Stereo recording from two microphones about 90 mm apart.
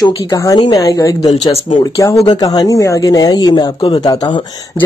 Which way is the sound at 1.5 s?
70° left (ahead or behind).